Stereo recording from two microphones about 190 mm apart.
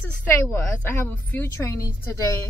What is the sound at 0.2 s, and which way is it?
A woman's voice, 10° left (ahead or behind).